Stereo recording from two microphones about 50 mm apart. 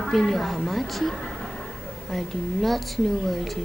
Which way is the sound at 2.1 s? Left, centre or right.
Centre.